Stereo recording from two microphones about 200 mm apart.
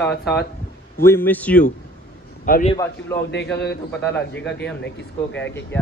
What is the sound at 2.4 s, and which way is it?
Speech, 40° left (ahead or behind).